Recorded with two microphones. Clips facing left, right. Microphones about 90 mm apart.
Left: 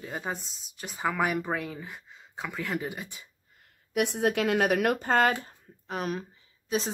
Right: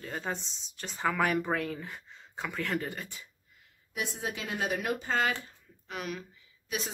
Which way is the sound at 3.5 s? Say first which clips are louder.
Left 9 dB; 65° left (ahead or behind).